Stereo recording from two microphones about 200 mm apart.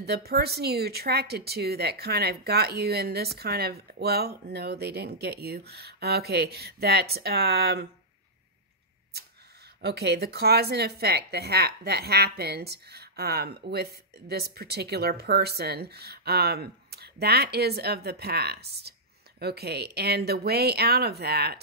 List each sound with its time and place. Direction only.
0.0 s a woman's voice: 50° right (ahead or behind)
9.8 s a woman's voice: 55° right (ahead or behind)